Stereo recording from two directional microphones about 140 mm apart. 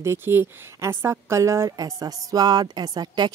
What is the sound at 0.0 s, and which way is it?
A woman's voice, 15° right (ahead or behind).